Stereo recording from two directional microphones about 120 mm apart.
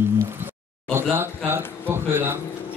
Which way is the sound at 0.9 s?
20° right (ahead or behind).